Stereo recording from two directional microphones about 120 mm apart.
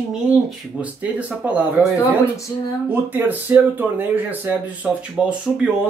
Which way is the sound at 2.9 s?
15° right (ahead or behind).